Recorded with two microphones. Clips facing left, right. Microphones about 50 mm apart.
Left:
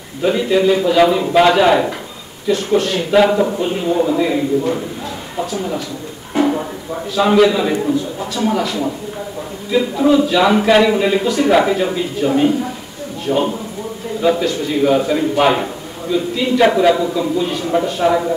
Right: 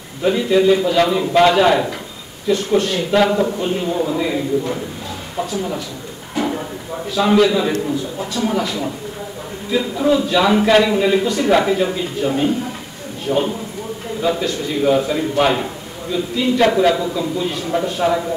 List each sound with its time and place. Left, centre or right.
0.2 s a man's voice: centre
7.2 s a man's voice: centre
14.4 s a man's voice: centre